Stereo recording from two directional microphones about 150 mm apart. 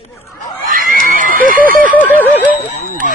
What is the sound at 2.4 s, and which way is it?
Speech, 60° left (ahead or behind).